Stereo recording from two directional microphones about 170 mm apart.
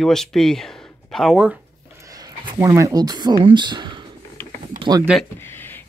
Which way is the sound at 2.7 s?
20° right (ahead or behind).